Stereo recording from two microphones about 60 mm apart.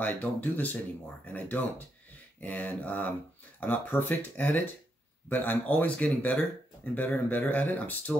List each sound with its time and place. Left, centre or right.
0.0 s speech: left